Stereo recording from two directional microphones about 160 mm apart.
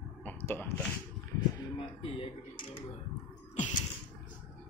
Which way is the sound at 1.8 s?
35° left (ahead or behind).